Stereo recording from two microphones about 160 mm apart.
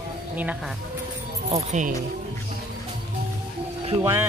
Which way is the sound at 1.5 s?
50° right (ahead or behind).